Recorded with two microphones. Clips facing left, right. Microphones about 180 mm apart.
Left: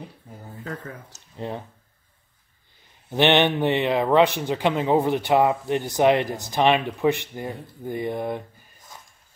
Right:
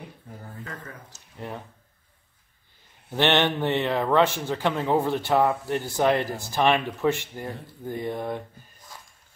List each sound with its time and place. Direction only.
3.1 s a man's voice: 15° left (ahead or behind)